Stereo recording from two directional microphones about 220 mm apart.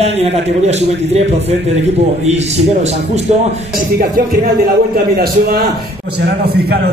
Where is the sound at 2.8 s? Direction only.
30° right (ahead or behind).